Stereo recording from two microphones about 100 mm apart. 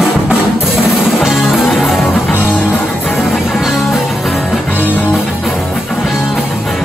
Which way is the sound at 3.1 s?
Centre (ahead or behind).